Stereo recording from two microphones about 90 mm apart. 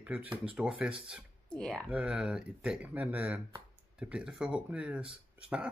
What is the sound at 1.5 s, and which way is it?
Speech, 10° left (ahead or behind).